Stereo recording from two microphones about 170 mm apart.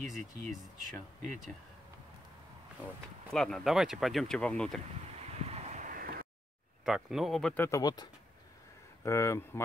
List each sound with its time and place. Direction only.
0.1 s speech: centre (ahead or behind)
3.3 s speech: 5° left (ahead or behind)
5.2 s a sound: 40° right (ahead or behind)
6.8 s speech: centre (ahead or behind); by 9.6 s 15° left (ahead or behind)